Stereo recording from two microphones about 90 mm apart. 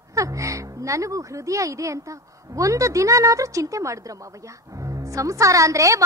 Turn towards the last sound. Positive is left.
turn(degrees=-35)  # may be behind; listen again after turning